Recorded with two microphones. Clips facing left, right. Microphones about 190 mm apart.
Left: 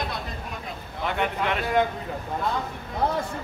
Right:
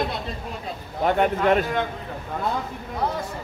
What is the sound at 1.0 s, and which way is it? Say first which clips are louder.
Speech: right 6 dB; 45° right (ahead or behind).